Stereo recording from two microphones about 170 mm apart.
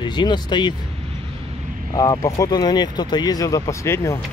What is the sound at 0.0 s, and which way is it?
Speech, 25° left (ahead or behind).